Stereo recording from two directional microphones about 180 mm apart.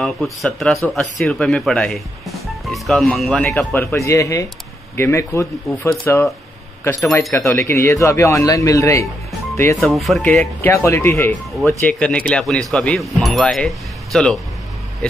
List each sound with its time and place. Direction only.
0.0 s speech: centre (ahead or behind)
3.8 s speech: 15° left (ahead or behind)
7.3 s speech: 15° left (ahead or behind)
9.8 s speech: centre (ahead or behind)